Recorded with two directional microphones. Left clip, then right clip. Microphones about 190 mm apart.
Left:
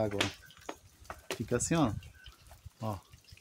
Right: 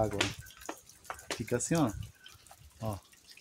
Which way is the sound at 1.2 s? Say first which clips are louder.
Left 1 dB; 20° left (ahead or behind).